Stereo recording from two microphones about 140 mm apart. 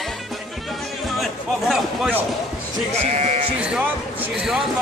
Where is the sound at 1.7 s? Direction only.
5° right (ahead or behind).